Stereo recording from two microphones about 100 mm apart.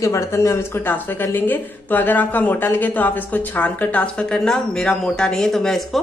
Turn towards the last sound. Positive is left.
turn(degrees=0)  # may be behind; listen again after turning